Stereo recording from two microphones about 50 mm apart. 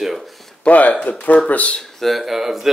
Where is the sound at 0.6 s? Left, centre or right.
Left.